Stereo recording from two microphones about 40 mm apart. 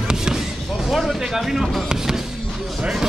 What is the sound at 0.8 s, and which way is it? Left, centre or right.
Speech, centre.